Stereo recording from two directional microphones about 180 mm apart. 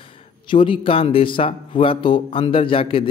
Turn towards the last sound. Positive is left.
turn(degrees=30)  # may be behind; listen again after turning